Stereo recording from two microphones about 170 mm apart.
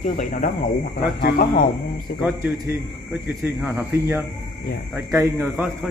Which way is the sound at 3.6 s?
15° right (ahead or behind).